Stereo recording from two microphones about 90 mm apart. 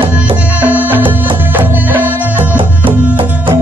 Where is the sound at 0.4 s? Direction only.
15° right (ahead or behind).